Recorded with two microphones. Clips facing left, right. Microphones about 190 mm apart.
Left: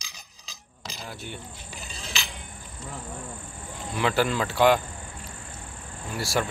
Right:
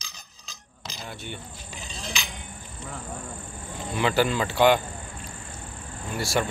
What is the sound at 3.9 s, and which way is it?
Speech, centre (ahead or behind).